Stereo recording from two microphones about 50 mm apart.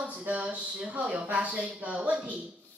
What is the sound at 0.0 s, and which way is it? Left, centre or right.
A child's voice, right.